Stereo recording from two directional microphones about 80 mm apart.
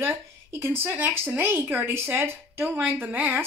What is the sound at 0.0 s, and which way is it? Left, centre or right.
A woman's voice, right.